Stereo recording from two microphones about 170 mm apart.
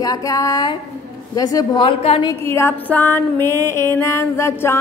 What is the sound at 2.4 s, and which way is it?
Music, 15° left (ahead or behind).